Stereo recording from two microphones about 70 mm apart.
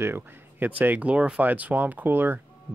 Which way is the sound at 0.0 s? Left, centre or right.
Right.